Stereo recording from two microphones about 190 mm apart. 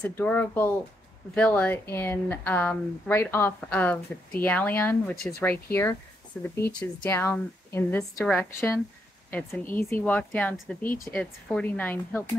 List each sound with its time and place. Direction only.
0.0 s speech: 10° left (ahead or behind)